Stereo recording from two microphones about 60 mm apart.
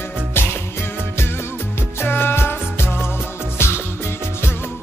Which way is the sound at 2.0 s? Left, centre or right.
Left.